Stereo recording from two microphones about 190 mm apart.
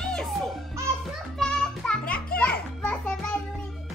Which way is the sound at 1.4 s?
5° left (ahead or behind).